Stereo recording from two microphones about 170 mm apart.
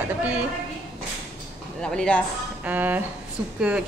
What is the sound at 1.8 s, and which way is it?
Speech, 5° left (ahead or behind).